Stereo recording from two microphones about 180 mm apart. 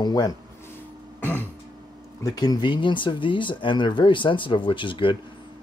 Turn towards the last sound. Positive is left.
turn(degrees=30)  # may be behind; listen again after turning